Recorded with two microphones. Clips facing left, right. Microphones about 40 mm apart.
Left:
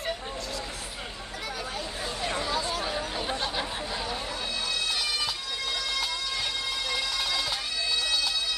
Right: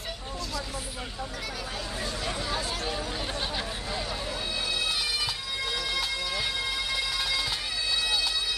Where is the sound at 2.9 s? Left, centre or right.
Centre.